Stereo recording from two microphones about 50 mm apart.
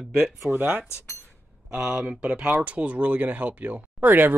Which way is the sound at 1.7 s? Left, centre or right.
Centre.